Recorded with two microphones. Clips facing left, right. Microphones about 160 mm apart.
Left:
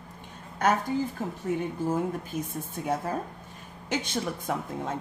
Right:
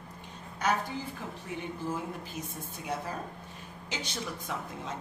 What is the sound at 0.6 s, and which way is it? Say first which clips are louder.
A woman's voice: left 6 dB; 50° left (ahead or behind).